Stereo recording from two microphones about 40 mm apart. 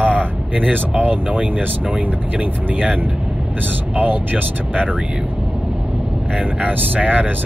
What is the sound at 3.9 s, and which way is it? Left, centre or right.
Speech, right.